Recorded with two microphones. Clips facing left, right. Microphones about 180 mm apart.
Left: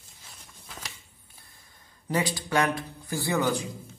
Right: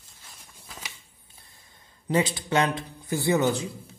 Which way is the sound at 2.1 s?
25° right (ahead or behind).